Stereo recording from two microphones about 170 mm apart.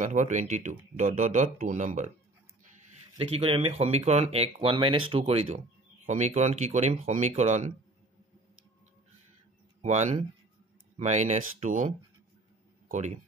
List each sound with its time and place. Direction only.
0.0 s speech: 45° right (ahead or behind)
3.2 s speech: 35° right (ahead or behind)
9.8 s speech: 40° right (ahead or behind)